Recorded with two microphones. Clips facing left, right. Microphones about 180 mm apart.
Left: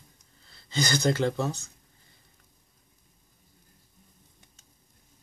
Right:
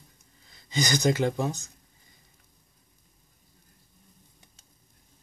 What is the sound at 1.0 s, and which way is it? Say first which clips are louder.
Speech: right 1 dB; 10° right (ahead or behind).